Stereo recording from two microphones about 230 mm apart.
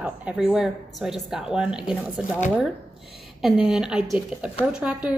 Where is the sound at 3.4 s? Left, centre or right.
Centre.